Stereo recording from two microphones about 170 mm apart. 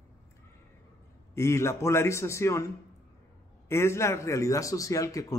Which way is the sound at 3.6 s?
15° left (ahead or behind).